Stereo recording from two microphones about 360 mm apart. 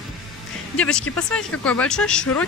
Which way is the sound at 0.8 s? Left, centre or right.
Centre.